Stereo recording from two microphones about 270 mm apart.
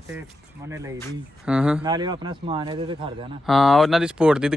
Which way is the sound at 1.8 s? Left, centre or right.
Centre.